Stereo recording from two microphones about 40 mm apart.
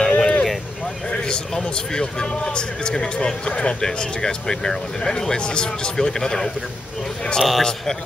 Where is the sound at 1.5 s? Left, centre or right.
Centre.